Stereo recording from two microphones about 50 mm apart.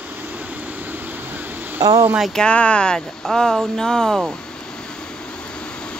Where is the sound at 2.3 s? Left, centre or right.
Centre.